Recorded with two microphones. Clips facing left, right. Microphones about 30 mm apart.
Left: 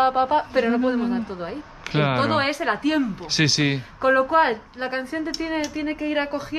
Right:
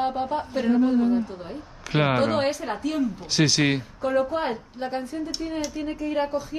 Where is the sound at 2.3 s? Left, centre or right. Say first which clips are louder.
Left 3 dB; left.